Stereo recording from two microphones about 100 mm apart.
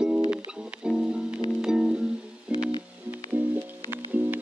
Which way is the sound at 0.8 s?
10° right (ahead or behind).